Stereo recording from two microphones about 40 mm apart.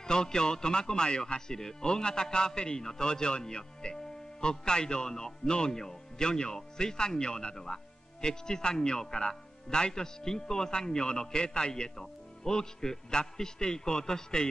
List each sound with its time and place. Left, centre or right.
0.0 s speech: centre